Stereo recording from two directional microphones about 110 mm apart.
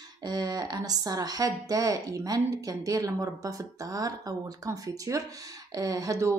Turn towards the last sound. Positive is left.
turn(degrees=-30)  # may be behind; listen again after turning